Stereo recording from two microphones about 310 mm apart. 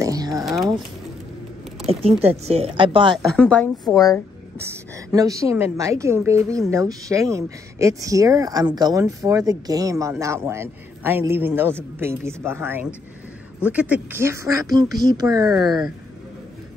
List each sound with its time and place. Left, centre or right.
0.0 s a sound: centre
1.9 s speech: centre
3.2 s a woman's voice: centre
4.6 s a woman's voice: centre